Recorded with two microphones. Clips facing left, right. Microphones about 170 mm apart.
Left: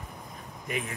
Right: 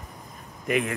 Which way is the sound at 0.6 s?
75° right (ahead or behind).